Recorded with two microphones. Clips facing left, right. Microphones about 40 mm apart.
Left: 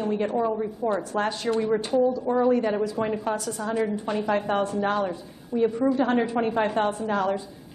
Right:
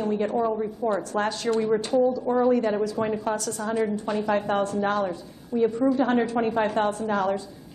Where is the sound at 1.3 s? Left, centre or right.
Centre.